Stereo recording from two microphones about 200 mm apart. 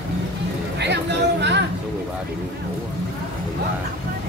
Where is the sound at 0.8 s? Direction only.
60° right (ahead or behind).